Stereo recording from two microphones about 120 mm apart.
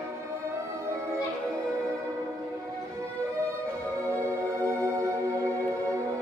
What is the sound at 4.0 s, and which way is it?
Music, 20° right (ahead or behind).